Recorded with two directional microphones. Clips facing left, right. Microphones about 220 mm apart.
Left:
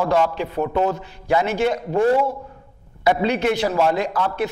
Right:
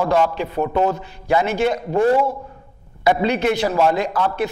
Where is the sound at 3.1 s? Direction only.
15° right (ahead or behind).